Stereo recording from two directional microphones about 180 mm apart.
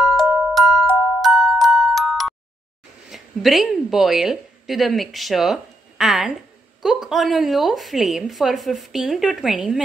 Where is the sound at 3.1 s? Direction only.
Centre (ahead or behind).